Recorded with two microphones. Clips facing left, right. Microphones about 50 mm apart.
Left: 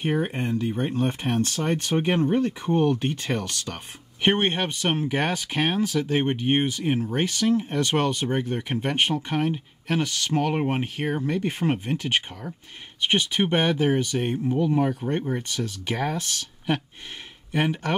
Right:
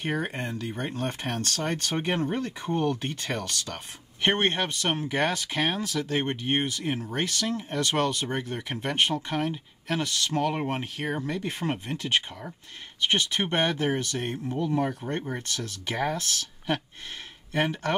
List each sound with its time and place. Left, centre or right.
0.1 s speech: centre